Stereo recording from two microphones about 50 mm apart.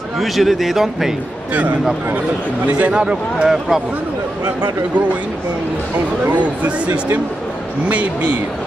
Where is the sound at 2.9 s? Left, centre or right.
Centre.